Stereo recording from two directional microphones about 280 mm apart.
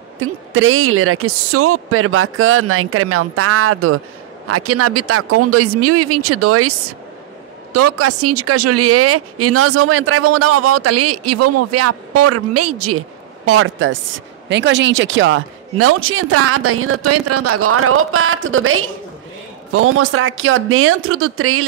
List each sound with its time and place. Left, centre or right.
0.2 s a woman's voice: right
7.7 s a woman's voice: right